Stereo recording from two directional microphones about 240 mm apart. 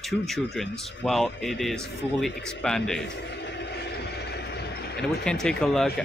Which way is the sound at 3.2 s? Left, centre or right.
Left.